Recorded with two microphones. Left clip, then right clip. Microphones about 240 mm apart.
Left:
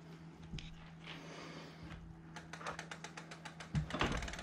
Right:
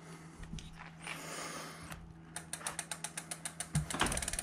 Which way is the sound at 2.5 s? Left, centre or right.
Centre.